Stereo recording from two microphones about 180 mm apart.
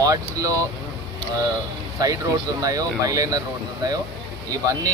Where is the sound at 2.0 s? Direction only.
20° right (ahead or behind).